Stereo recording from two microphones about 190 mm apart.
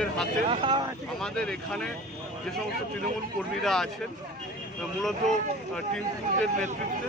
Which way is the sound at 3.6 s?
Centre (ahead or behind).